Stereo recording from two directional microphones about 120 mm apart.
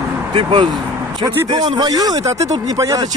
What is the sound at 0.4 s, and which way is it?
Speech, 45° right (ahead or behind).